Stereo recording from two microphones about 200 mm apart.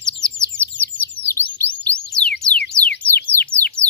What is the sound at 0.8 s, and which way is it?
Music, 10° left (ahead or behind).